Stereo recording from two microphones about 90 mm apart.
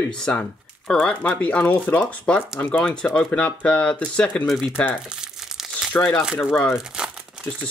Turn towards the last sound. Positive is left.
turn(degrees=-10)  # may be behind; listen again after turning